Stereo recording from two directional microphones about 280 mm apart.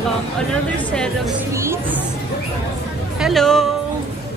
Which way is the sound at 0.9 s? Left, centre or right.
Centre.